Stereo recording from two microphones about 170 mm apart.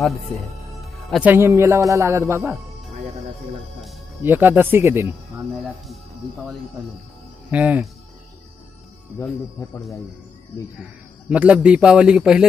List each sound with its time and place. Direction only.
1.1 s speech: 10° right (ahead or behind)
4.2 s speech: 10° right (ahead or behind)
5.9 s a man's voice: centre (ahead or behind)
7.5 s speech: 10° right (ahead or behind)
10.8 s a man's voice: 5° right (ahead or behind)